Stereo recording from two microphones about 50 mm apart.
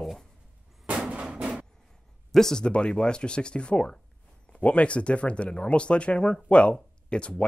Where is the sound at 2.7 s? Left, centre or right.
Centre.